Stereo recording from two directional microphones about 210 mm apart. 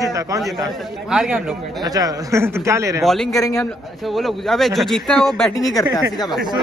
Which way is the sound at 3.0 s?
Centre (ahead or behind).